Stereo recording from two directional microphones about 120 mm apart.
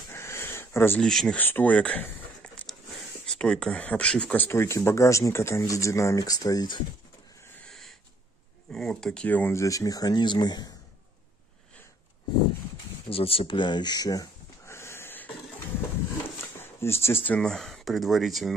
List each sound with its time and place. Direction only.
0.1 s a sound: 20° left (ahead or behind)
1.0 s speech: 5° left (ahead or behind)
1.4 s speech: 15° left (ahead or behind); by 6.8 s 35° left (ahead or behind)
8.7 s speech: 5° left (ahead or behind); by 10.7 s 35° left (ahead or behind)
13.1 s speech: 50° left (ahead or behind); by 14.2 s 35° left (ahead or behind)
14.7 s sniff: 20° left (ahead or behind)
16.5 s speech: 20° left (ahead or behind); by 18.5 s centre (ahead or behind)